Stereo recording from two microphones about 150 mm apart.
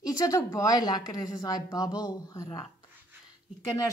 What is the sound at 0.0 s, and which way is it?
Speech, 25° left (ahead or behind).